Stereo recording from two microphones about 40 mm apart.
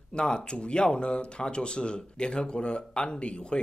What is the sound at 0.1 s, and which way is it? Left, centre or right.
Speech, left.